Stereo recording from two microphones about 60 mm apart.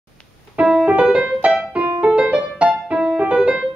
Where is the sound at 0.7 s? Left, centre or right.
Centre.